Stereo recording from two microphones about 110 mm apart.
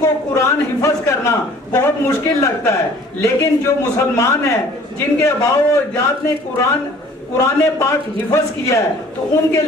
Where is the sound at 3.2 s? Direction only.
25° left (ahead or behind).